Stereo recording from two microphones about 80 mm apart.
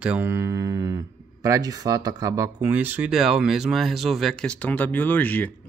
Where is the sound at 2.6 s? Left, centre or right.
Right.